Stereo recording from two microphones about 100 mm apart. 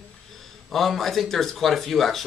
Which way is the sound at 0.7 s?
Centre (ahead or behind).